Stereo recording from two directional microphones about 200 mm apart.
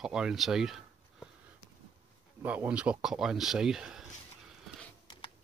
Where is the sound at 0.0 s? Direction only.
5° right (ahead or behind).